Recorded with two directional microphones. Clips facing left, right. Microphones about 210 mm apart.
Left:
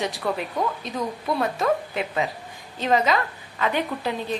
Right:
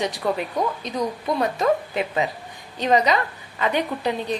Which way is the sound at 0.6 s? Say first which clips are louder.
Right 2 dB; 20° right (ahead or behind).